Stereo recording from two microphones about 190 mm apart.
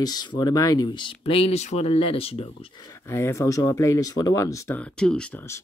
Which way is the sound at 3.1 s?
15° left (ahead or behind).